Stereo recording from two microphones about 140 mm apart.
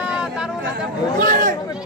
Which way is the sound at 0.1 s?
5° right (ahead or behind).